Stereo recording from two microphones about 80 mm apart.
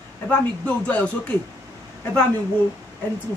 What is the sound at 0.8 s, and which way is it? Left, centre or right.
Speech, centre.